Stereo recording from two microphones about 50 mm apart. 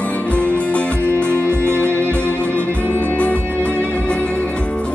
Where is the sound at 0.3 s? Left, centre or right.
Left.